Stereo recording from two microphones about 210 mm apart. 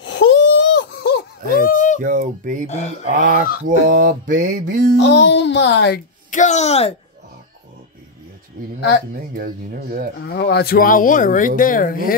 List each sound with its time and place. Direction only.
0.0 s baby cry: 55° left (ahead or behind)
1.7 s a sound: 40° left (ahead or behind)
2.0 s mantra: 40° right (ahead or behind)
4.9 s a child's voice: 60° left (ahead or behind)
6.3 s speech: 35° left (ahead or behind)
9.4 s speech: 45° right (ahead or behind)
10.2 s speech: 50° left (ahead or behind)